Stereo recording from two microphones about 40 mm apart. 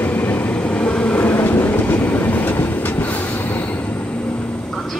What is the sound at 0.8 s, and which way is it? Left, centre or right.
Vehicle, left.